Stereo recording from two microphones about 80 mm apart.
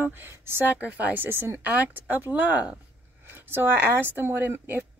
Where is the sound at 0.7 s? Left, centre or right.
Centre.